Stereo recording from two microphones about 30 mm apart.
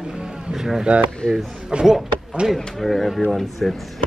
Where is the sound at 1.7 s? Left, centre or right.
Right.